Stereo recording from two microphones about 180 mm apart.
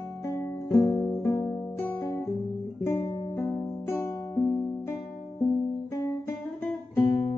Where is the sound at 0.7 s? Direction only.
15° left (ahead or behind).